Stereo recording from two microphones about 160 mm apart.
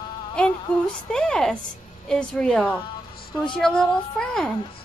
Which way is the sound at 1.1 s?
5° left (ahead or behind).